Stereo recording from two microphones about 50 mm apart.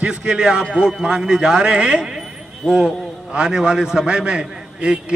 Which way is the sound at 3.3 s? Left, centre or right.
Centre.